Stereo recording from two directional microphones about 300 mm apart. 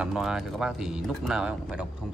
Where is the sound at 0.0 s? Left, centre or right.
Centre.